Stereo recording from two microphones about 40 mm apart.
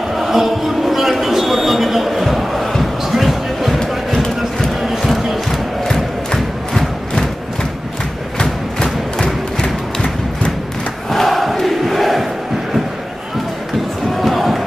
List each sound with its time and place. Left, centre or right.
0.2 s a sound: centre
4.8 s crowd: centre
9.2 s music: left
11.1 s crowd: centre
14.2 s music: centre